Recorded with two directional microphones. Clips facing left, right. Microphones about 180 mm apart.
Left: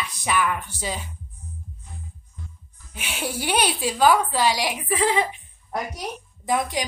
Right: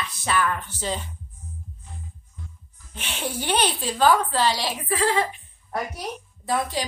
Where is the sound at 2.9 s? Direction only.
10° left (ahead or behind).